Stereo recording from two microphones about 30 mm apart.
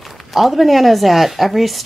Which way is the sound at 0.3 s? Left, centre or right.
Centre.